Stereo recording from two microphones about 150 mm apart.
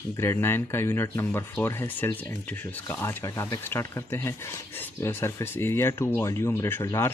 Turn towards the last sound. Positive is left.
turn(degrees=20)  # may be behind; listen again after turning